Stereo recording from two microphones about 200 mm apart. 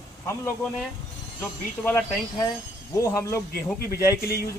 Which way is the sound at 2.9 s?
15° left (ahead or behind).